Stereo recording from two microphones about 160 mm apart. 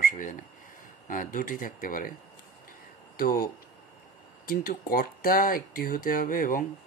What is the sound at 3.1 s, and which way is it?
Speech, 65° left (ahead or behind).